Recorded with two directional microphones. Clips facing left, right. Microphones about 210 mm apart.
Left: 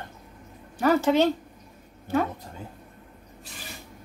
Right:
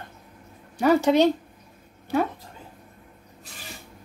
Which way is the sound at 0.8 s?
15° right (ahead or behind).